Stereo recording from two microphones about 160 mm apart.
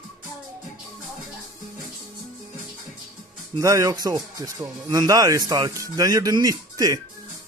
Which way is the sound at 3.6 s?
20° right (ahead or behind).